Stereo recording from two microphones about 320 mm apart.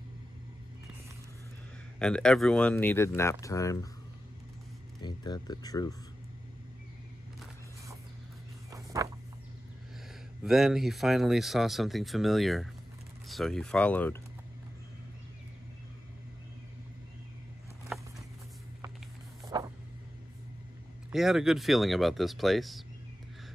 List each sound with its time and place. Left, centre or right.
2.0 s speech: centre
5.0 s speech: centre
8.7 s a sound: centre
10.4 s speech: centre
17.9 s a sound: centre
19.5 s vehicle: centre
21.1 s speech: centre